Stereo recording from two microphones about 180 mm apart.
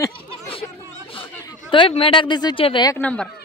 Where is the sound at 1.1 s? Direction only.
30° left (ahead or behind).